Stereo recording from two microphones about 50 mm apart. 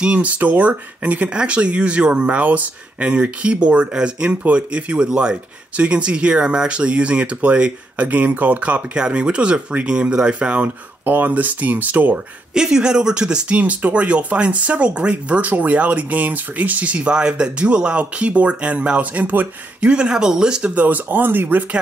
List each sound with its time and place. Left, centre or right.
0.0 s speech: right
8.9 s speech: centre
11.1 s speech: right
12.5 s speech: centre; by 19.9 s right
19.9 s speech: centre
20.7 s speech: right